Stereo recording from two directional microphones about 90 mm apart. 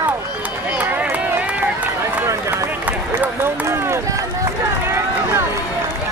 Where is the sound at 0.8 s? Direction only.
20° right (ahead or behind).